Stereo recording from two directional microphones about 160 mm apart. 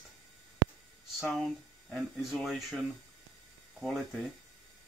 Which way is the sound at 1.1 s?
Centre (ahead or behind).